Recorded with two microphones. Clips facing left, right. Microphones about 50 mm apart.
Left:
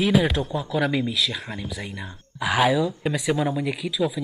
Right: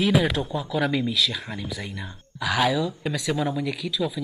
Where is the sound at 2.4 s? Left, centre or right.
Centre.